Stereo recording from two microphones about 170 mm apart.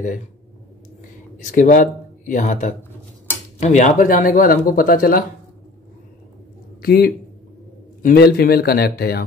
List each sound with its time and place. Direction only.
1.4 s speech: 50° left (ahead or behind)
6.8 s speech: 60° left (ahead or behind)